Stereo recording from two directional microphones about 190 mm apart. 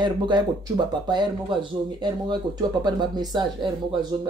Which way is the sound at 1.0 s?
20° right (ahead or behind).